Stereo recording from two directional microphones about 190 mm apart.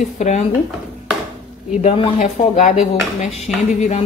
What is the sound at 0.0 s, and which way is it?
Speech, 40° left (ahead or behind).